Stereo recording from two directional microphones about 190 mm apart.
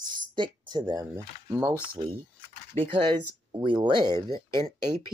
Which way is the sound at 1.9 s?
30° right (ahead or behind).